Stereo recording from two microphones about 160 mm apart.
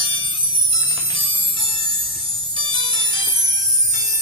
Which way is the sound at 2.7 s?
30° left (ahead or behind).